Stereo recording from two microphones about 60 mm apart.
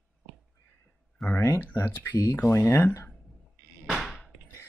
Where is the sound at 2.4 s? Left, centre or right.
Left.